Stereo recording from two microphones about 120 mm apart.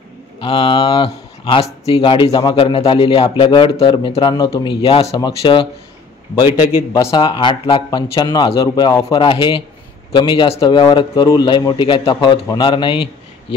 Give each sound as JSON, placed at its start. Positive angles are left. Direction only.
{"t": 0.4, "sound": "speech", "side_deg": 40}
{"t": 4.8, "sound": "a man's voice", "side_deg": 50}